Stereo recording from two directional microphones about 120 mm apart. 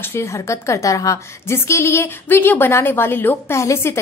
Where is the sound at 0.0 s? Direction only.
20° left (ahead or behind).